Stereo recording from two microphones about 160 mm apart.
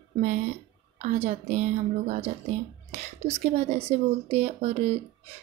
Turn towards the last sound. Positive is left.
turn(degrees=-40)  # may be behind; listen again after turning